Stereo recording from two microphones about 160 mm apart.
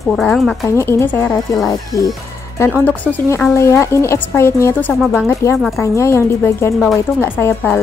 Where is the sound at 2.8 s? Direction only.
10° left (ahead or behind).